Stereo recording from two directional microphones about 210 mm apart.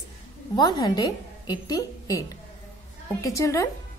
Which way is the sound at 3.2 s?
15° left (ahead or behind).